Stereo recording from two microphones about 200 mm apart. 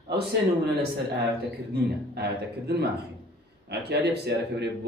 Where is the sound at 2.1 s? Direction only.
55° right (ahead or behind).